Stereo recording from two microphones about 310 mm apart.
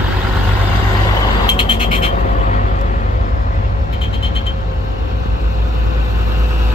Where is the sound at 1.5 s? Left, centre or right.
Centre.